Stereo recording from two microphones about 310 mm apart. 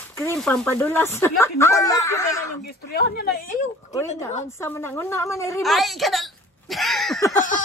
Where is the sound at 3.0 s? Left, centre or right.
Left.